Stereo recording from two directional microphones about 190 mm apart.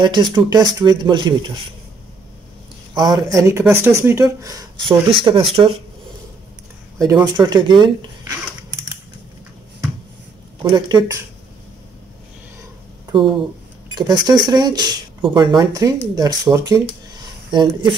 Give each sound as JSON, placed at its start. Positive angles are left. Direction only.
{"t": 0.0, "sound": "speech", "side_deg": -25}
{"t": 2.9, "sound": "speech", "side_deg": -20}
{"t": 7.0, "sound": "speech", "side_deg": -20}
{"t": 10.6, "sound": "speech", "side_deg": -20}
{"t": 13.1, "sound": "speech", "side_deg": -25}